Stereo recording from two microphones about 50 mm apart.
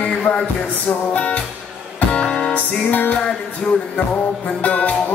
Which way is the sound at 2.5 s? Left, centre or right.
Left.